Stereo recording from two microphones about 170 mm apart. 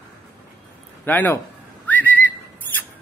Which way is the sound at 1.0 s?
10° left (ahead or behind).